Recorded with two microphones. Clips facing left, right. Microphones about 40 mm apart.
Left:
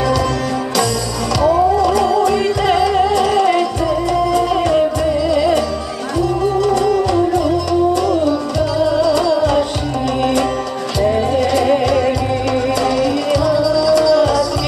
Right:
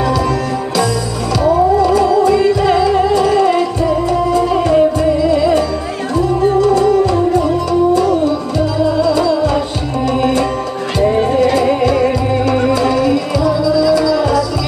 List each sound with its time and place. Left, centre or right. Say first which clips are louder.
1.8 s music: right 2 dB; left
6.1 s music: right 3 dB; right
8.7 s music: even; left
11.3 s music: right 2 dB; right
13.6 s music: right 2 dB; left